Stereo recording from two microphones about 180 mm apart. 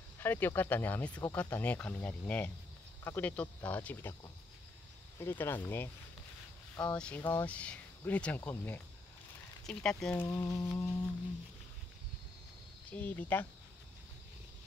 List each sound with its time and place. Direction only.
0.2 s speech: 10° left (ahead or behind)
10.2 s speech: 15° left (ahead or behind)
12.9 s speech: 10° left (ahead or behind)